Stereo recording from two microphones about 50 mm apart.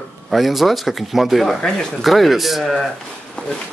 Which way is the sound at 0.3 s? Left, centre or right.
Centre.